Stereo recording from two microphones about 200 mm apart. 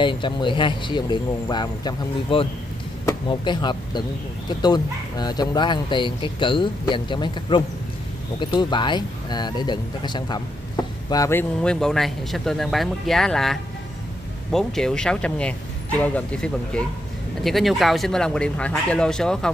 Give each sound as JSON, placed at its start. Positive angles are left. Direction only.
{"t": 0.0, "sound": "speech", "side_deg": 25}